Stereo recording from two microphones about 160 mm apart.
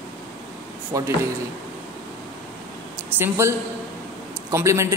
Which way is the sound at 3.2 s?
15° right (ahead or behind).